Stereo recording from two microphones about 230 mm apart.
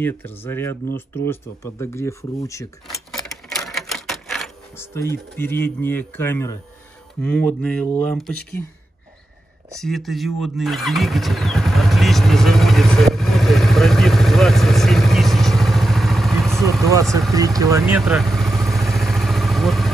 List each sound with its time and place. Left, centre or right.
0.0 s speech: centre
3.1 s typewriter: centre
5.1 s speech: centre
9.8 s vehicle: centre
17.3 s vehicle: centre